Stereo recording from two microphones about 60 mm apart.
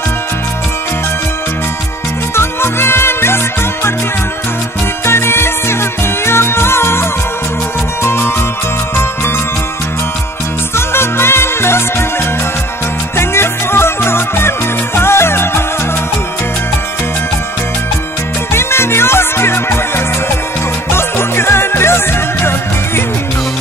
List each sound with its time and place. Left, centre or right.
2.3 s music: left
5.0 s music: left
10.9 s music: left
13.1 s music: left
18.5 s music: left
20.9 s music: left